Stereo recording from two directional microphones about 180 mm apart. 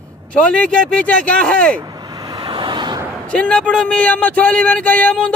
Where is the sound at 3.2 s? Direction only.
5° left (ahead or behind).